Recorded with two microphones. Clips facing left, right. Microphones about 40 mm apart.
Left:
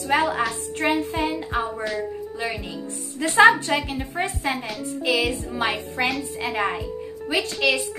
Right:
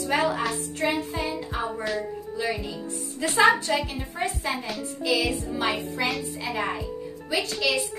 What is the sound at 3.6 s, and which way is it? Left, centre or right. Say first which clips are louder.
A woman's voice: left 2 dB; left.